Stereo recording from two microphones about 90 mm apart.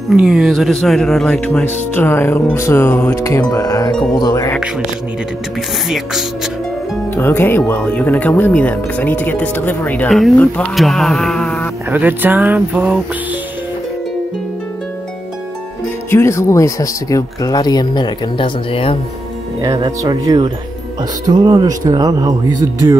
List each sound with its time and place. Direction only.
0.1 s speech: 5° right (ahead or behind); by 1.7 s 10° left (ahead or behind)
2.0 s speech: 25° left (ahead or behind)
3.2 s speech: 35° left (ahead or behind)
5.9 s speech: 5° right (ahead or behind)
7.2 s speech: 25° left (ahead or behind)
10.0 s speech: centre (ahead or behind)
10.3 s speech: 15° left (ahead or behind)
10.8 s a sound: centre (ahead or behind)
11.9 s speech: 20° right (ahead or behind)
16.1 s speech: 30° left (ahead or behind); by 18.9 s 90° left
20.1 s speech: 55° right (ahead or behind)